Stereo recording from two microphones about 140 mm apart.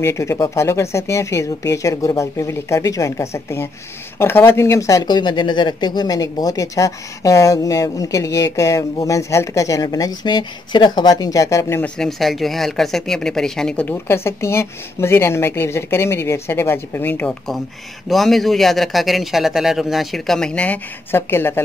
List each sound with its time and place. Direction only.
0.0 s speech: 20° left (ahead or behind)
11.8 s speech: 5° left (ahead or behind)
18.0 s speech: centre (ahead or behind); by 21.5 s 15° left (ahead or behind)